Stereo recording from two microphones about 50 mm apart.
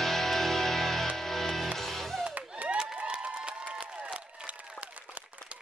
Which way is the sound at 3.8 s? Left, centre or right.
Right.